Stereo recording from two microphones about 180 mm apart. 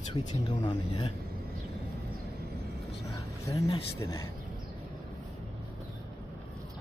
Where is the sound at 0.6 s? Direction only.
30° left (ahead or behind).